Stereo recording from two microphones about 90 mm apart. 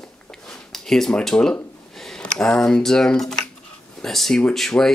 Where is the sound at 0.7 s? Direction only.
5° left (ahead or behind).